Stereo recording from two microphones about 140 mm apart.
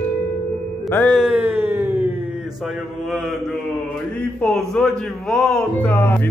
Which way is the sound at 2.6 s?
Centre (ahead or behind).